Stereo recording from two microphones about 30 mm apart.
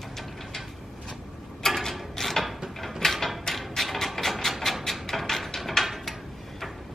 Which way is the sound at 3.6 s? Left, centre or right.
Centre.